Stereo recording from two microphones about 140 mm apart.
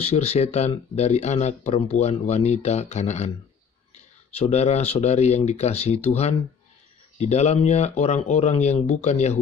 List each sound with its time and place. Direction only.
0.1 s speech: 50° left (ahead or behind)